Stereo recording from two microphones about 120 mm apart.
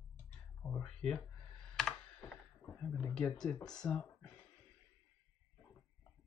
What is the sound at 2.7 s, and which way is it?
Speech, 10° left (ahead or behind).